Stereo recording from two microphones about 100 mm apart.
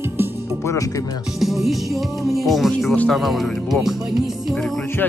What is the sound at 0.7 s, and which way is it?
Speech, 35° left (ahead or behind).